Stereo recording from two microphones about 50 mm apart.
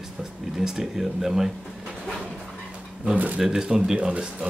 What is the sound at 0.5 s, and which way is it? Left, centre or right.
Speech, centre.